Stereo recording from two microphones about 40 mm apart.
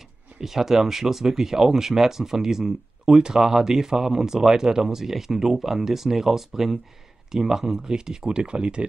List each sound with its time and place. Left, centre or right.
0.4 s speech: centre; by 8.8 s right